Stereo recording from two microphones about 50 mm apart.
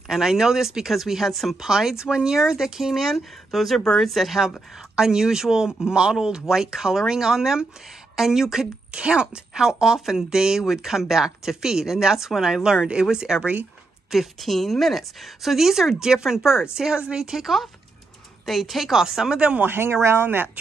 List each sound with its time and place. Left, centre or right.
0.1 s a woman's voice: centre
1.7 s a woman's voice: centre
4.1 s a woman's voice: centre
14.1 s a woman's voice: centre
19.6 s speech: right